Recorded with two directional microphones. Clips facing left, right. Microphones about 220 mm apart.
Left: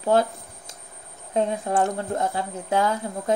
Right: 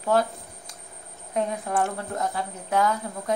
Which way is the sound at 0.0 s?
25° left (ahead or behind).